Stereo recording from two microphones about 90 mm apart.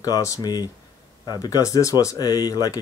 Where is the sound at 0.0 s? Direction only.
40° left (ahead or behind).